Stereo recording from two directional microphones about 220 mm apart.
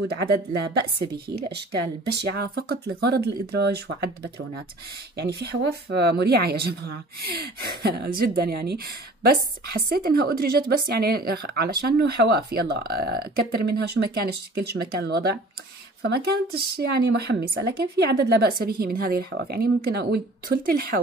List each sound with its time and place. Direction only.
0.1 s speech: 45° right (ahead or behind)